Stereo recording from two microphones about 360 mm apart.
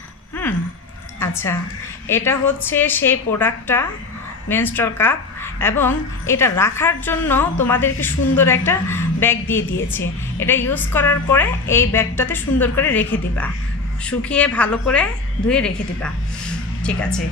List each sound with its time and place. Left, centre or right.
1.2 s a woman's voice: centre